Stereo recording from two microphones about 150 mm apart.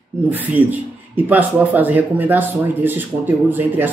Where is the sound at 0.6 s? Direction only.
35° right (ahead or behind).